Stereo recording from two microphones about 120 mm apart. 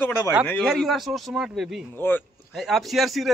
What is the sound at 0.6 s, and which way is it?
Speech, centre (ahead or behind).